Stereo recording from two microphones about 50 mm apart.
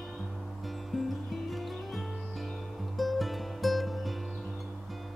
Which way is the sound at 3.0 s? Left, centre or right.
Centre.